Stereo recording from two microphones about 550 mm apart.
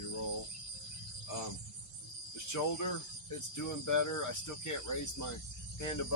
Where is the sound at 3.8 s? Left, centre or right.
Left.